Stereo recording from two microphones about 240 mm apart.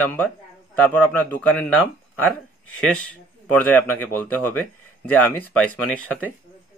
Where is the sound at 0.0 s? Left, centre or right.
Centre.